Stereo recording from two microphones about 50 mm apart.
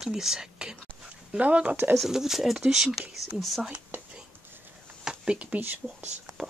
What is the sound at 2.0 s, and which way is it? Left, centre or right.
Speech, centre.